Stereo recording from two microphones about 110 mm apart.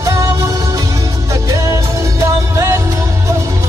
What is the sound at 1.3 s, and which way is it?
Music, 30° right (ahead or behind).